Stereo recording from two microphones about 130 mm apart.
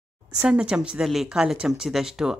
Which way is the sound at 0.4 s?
5° right (ahead or behind).